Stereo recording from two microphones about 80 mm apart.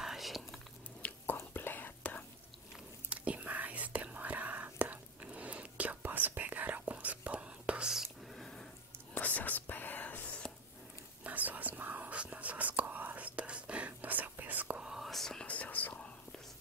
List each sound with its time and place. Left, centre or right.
0.0 s whispering: centre
1.0 s whispering: left
3.1 s whispering: centre
9.1 s whispering: left
11.2 s whispering: right
14.8 s whispering: centre
15.0 s whispering: centre
15.4 s whispering: centre